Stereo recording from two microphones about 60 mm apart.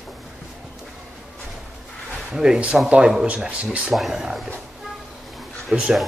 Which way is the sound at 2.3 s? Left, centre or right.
Centre.